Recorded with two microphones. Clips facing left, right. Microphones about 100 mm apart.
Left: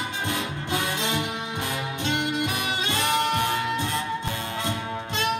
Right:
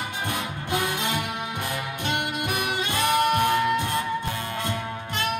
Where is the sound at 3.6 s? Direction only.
55° right (ahead or behind).